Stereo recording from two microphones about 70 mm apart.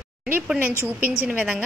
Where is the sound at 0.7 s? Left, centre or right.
Left.